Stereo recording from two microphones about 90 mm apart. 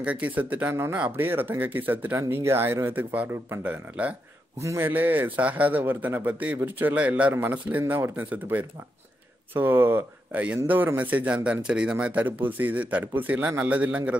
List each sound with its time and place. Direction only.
0.0 s a man's voice: 15° right (ahead or behind)
4.6 s a man's voice: 35° right (ahead or behind)
4.8 s a man's voice: 20° right (ahead or behind)